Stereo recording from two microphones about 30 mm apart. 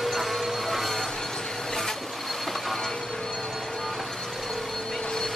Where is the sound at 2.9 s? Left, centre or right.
Left.